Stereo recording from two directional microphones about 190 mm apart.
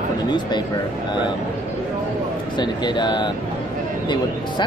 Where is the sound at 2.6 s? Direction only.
25° left (ahead or behind).